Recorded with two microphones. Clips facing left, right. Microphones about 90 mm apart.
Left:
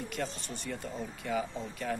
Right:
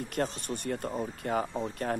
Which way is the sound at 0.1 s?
50° right (ahead or behind).